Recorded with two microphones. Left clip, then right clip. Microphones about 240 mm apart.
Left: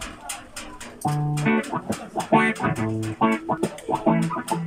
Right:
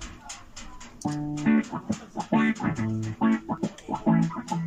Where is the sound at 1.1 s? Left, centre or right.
Left.